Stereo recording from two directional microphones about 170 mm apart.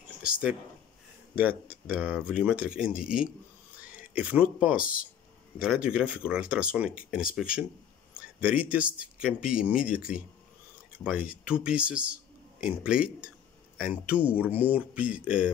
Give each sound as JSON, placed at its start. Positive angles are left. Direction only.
{"t": 1.3, "sound": "speech", "side_deg": -10}
{"t": 4.7, "sound": "speech", "side_deg": 55}
{"t": 5.6, "sound": "speech", "side_deg": -5}